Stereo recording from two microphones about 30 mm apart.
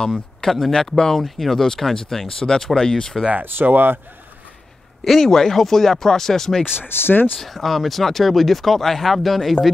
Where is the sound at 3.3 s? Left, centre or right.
Right.